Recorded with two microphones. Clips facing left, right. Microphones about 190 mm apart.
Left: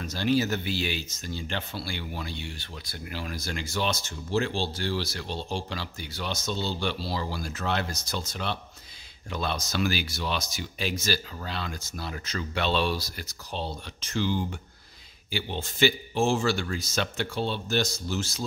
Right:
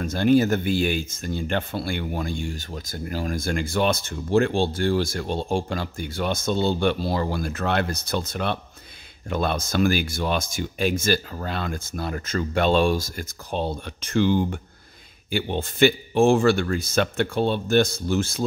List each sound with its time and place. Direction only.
0.0 s speech: 50° right (ahead or behind)